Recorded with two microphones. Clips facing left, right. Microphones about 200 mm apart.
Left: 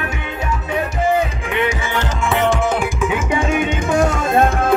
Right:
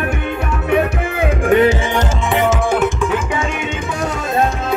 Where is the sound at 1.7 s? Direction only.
20° right (ahead or behind).